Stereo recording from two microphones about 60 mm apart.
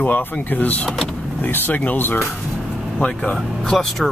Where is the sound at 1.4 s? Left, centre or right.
Left.